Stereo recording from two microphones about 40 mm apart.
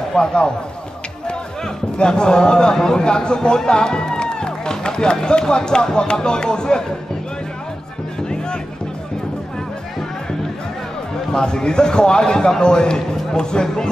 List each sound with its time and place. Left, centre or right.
0.2 s a man's voice: left
11.3 s a man's voice: left